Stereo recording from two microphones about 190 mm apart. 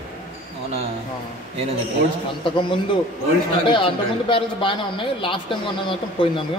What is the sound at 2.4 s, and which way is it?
Speech, 25° left (ahead or behind).